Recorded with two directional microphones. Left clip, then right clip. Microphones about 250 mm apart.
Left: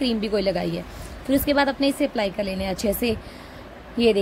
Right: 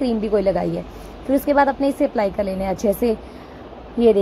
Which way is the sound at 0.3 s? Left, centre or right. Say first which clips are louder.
Right 7 dB; centre.